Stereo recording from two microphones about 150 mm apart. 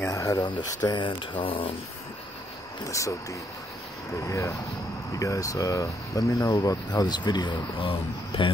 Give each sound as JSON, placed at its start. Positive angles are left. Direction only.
{"t": 0.1, "sound": "speech", "side_deg": 20}
{"t": 2.8, "sound": "speech", "side_deg": 20}
{"t": 4.2, "sound": "speech", "side_deg": 20}